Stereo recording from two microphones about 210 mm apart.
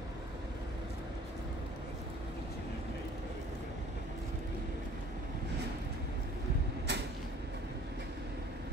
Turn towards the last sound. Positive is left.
turn(degrees=-55)  # may be behind; listen again after turning